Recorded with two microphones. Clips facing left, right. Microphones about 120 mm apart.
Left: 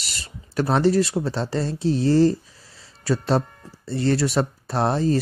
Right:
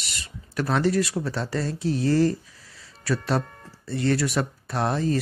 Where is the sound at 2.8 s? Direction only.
30° left (ahead or behind).